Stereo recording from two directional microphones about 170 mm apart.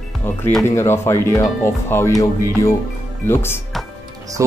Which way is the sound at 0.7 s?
15° left (ahead or behind).